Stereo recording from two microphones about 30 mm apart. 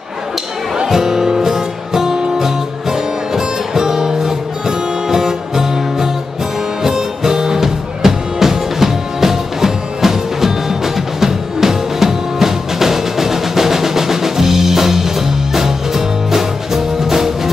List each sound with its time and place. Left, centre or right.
0.8 s music: centre